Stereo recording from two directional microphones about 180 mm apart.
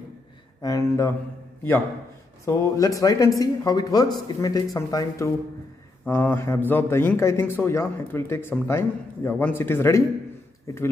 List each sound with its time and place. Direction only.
0.6 s speech: 20° left (ahead or behind)
2.4 s speech: 15° left (ahead or behind)